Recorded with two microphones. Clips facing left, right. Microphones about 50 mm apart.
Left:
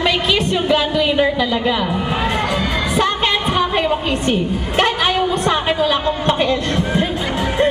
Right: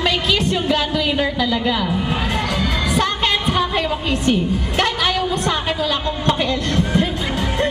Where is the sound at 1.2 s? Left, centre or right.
Left.